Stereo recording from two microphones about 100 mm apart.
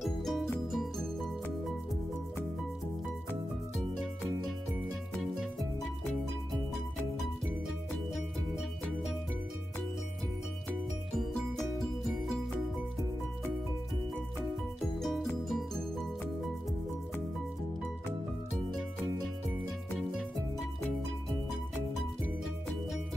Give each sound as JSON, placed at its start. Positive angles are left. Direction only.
{"t": 0.0, "sound": "music", "side_deg": 0}
{"t": 5.2, "sound": "music", "side_deg": 0}
{"t": 7.2, "sound": "music", "side_deg": 0}
{"t": 11.1, "sound": "music", "side_deg": 0}
{"t": 14.8, "sound": "music", "side_deg": 0}
{"t": 20.0, "sound": "music", "side_deg": 0}